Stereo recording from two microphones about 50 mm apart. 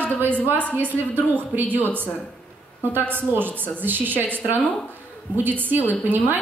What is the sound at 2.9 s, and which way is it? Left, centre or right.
A woman's voice, right.